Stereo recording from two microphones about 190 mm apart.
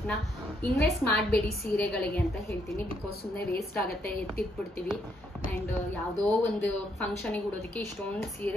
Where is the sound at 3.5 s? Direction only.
55° left (ahead or behind).